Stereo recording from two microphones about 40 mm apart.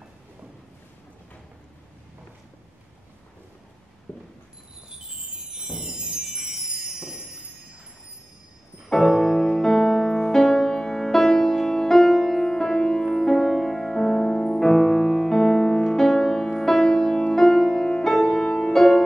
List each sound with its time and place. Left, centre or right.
4.1 s a sound: left
5.1 s music: centre
9.1 s music: centre
9.4 s music: centre